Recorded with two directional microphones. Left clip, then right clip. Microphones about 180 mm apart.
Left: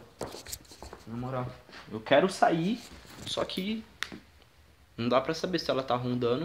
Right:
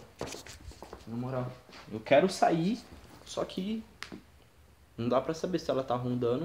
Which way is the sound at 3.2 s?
10° left (ahead or behind).